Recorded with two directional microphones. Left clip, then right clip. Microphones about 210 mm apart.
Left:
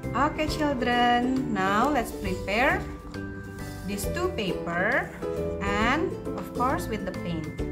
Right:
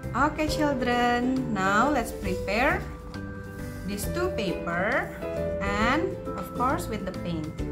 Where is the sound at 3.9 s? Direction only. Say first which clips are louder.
Even; 10° left (ahead or behind).